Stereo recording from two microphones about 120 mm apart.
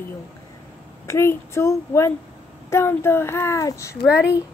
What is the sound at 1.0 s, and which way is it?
Speech, 20° left (ahead or behind).